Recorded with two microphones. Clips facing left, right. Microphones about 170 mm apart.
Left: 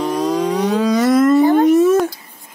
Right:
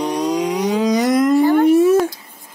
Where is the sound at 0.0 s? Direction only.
15° right (ahead or behind).